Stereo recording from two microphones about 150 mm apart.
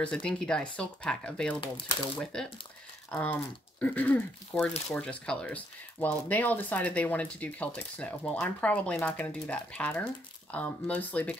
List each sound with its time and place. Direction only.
0.0 s speech: 5° left (ahead or behind)